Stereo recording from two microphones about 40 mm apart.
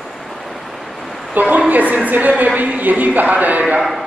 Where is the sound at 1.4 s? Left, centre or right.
Right.